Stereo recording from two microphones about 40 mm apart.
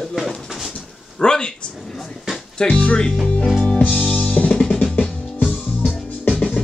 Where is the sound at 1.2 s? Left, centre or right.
Centre.